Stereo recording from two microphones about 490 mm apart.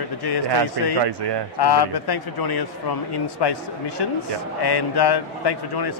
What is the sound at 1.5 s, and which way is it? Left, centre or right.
Speech, left.